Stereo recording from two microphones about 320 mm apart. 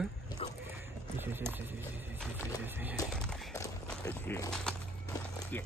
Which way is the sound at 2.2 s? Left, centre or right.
Centre.